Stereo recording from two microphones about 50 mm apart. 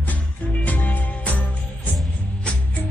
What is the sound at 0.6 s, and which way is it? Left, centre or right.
Music, left.